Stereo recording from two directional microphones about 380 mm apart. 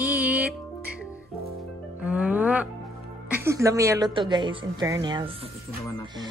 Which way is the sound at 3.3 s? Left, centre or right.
Centre.